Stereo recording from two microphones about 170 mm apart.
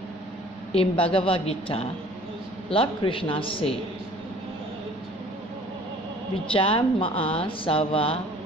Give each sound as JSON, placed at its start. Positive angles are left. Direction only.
{"t": 0.7, "sound": "a woman's voice", "side_deg": 35}
{"t": 6.5, "sound": "a woman's voice", "side_deg": 30}